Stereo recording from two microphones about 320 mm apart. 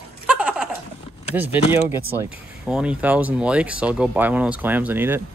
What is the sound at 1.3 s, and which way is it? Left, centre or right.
Speech, centre.